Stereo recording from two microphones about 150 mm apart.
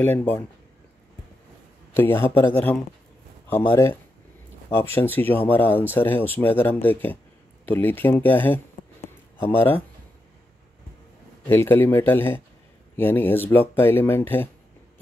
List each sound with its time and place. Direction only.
0.0 s speech: 15° left (ahead or behind)
2.0 s speech: 15° left (ahead or behind)
11.4 s speech: 15° left (ahead or behind)